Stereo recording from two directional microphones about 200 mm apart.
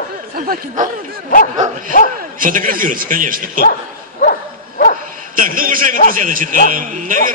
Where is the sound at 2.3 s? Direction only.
40° right (ahead or behind).